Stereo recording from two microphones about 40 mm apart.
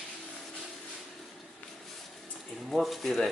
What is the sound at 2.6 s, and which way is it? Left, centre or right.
Speech, centre.